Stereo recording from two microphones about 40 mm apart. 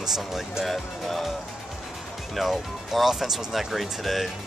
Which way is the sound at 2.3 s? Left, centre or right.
Centre.